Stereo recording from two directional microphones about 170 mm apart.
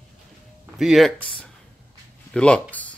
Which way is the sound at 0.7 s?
Centre (ahead or behind).